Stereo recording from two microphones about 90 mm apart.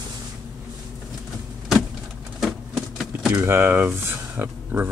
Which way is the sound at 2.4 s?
Centre (ahead or behind).